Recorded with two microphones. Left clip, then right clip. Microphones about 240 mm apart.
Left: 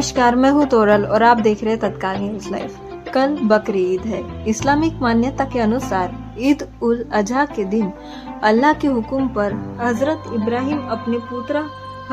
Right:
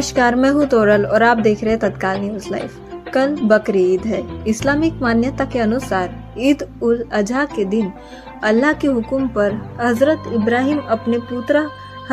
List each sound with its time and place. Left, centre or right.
0.0 s a woman's voice: centre